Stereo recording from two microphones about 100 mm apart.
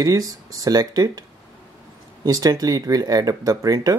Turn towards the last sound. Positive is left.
turn(degrees=-35)  # may be behind; listen again after turning